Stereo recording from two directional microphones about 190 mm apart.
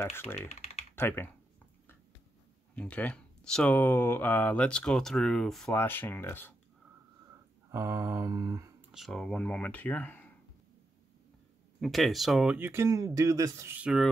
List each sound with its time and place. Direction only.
0.5 s typing: 35° left (ahead or behind)
0.9 s speech: 10° left (ahead or behind)
2.7 s speech: 5° left (ahead or behind)
7.7 s speech: 15° right (ahead or behind)
8.9 s speech: centre (ahead or behind)
11.8 s speech: centre (ahead or behind)